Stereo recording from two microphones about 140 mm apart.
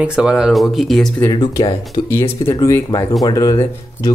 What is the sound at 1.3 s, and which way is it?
Speech, 35° left (ahead or behind).